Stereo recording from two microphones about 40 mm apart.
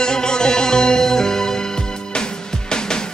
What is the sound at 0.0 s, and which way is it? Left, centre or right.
Music, centre.